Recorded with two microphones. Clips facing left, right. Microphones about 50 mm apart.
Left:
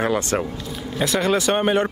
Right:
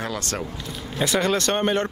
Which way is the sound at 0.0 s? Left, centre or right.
Left.